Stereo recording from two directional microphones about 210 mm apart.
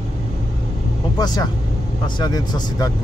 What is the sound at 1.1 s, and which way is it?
Speech, 20° left (ahead or behind).